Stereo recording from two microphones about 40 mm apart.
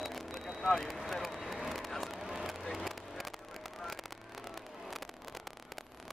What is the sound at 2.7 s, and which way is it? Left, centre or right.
Vehicle, centre.